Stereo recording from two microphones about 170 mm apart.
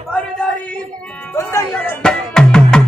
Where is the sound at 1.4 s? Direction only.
15° left (ahead or behind).